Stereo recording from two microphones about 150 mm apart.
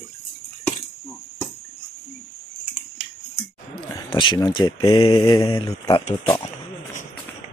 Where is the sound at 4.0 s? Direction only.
35° left (ahead or behind).